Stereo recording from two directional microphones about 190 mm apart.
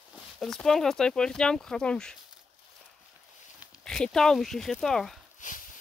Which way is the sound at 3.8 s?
5° left (ahead or behind).